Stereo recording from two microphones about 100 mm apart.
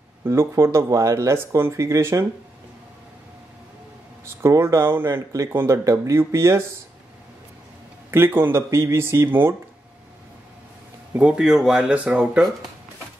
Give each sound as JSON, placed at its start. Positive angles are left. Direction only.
{"t": 0.2, "sound": "speech", "side_deg": -30}
{"t": 4.2, "sound": "speech", "side_deg": -30}
{"t": 5.9, "sound": "speech", "side_deg": -30}
{"t": 8.1, "sound": "speech", "side_deg": -25}
{"t": 11.1, "sound": "speech", "side_deg": -10}